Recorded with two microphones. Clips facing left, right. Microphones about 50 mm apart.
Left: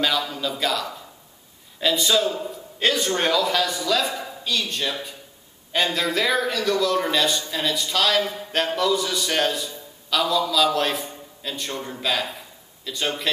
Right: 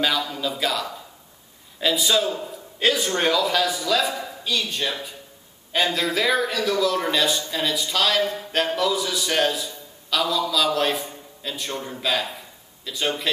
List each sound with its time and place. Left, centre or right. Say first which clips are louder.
0.2 s a man's voice: even; centre